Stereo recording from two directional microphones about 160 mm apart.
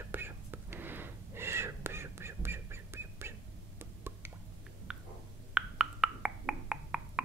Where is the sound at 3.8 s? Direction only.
15° right (ahead or behind).